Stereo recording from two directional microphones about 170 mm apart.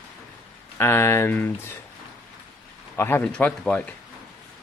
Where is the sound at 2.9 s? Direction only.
10° left (ahead or behind).